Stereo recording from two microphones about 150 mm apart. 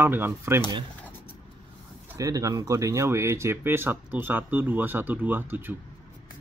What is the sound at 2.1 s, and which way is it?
Speech, 20° right (ahead or behind).